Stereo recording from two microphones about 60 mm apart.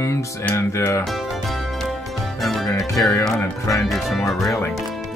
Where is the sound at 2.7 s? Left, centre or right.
Centre.